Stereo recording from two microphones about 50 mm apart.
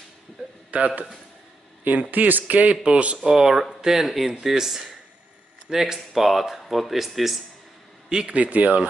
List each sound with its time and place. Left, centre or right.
0.7 s a man's voice: right
3.2 s speech: centre
8.3 s speech: right